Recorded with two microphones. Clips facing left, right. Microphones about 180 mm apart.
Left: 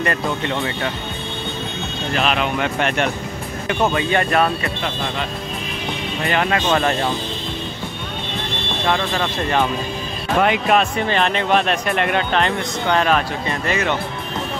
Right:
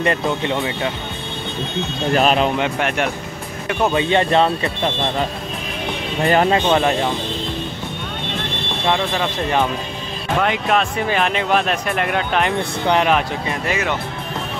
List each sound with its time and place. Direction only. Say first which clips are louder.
0.0 s speech: right 2 dB; 20° right (ahead or behind)
2.1 s speech: right 4 dB; 35° right (ahead or behind)
3.9 s speech: right 2 dB; 25° right (ahead or behind)
6.2 s speech: right 5 dB; 35° right (ahead or behind)
6.7 s speech: right 2 dB; 15° right (ahead or behind)
8.8 s speech: right 1 dB; 15° right (ahead or behind)
10.4 s speech: left 2 dB; 5° left (ahead or behind)
11.1 s speech: even; 5° right (ahead or behind)